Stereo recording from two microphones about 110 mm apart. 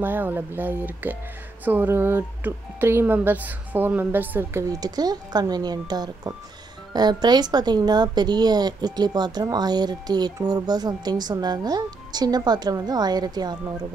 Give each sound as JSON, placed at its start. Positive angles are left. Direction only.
{"t": 0.0, "sound": "speech", "side_deg": -20}
{"t": 4.6, "sound": "speech", "side_deg": -35}